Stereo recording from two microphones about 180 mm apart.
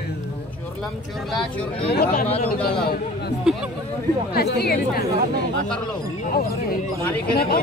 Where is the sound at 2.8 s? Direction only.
55° left (ahead or behind).